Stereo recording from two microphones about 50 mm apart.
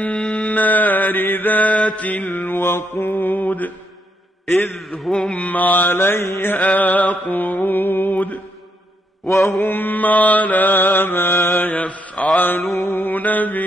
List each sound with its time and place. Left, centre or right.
0.2 s a sound: centre
0.5 s mantra: left
4.7 s a man's voice: centre
5.3 s mantra: left
6.6 s mantra: left
9.5 s mantra: left
12.4 s mantra: left